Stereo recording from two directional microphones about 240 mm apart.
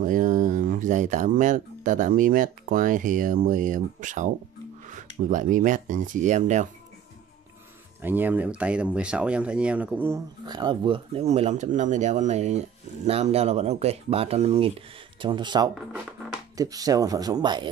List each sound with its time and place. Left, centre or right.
0.0 s speech: right
8.0 s speech: centre